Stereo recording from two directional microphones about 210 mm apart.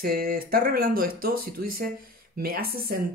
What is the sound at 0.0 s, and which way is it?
Speech, 45° right (ahead or behind).